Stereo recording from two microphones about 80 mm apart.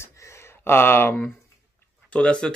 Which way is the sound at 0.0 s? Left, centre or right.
Left.